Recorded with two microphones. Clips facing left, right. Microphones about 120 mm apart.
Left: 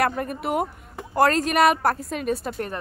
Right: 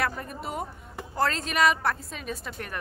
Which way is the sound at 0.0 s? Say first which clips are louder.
Left 7 dB; 60° left (ahead or behind).